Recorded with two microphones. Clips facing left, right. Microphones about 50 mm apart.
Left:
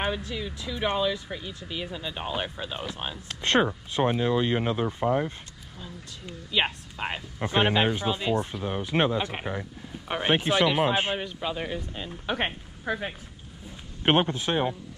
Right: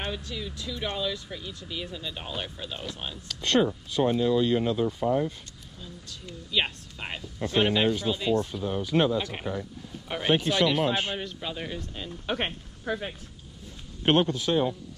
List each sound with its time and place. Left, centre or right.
0.0 s speech: centre
3.3 s speech: left
5.8 s speech: centre